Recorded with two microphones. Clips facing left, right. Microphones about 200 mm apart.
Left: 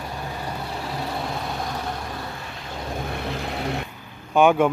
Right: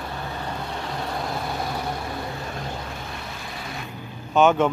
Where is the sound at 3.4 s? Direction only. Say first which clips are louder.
Left 8 dB; 70° left (ahead or behind).